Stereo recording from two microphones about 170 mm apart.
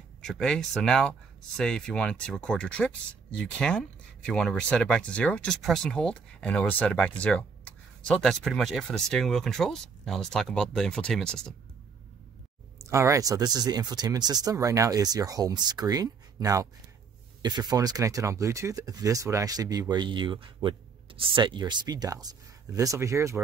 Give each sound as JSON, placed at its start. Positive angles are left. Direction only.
{"t": 0.2, "sound": "speech", "side_deg": 5}
{"t": 12.7, "sound": "speech", "side_deg": -15}